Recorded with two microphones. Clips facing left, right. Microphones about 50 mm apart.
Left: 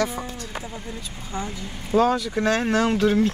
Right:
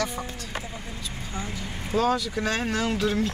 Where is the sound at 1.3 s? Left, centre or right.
Left.